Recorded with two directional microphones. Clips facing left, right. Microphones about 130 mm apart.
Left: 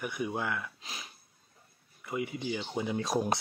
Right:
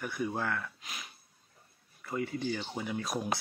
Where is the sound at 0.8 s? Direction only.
30° left (ahead or behind).